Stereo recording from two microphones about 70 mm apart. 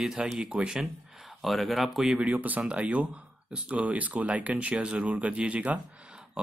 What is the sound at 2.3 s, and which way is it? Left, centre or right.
Speech, right.